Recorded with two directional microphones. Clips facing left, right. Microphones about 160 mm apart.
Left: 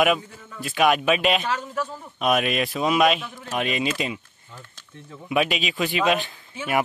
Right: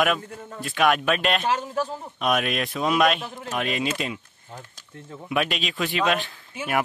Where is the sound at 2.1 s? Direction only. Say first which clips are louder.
Left 2 dB; centre (ahead or behind).